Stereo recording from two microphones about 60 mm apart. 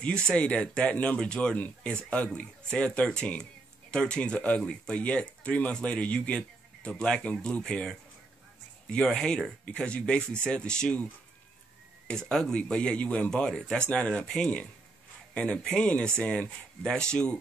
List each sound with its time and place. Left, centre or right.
0.0 s a man's voice: centre
12.3 s a man's voice: centre